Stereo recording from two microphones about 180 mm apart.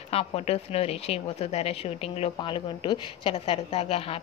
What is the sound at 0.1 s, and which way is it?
Speech, 35° left (ahead or behind).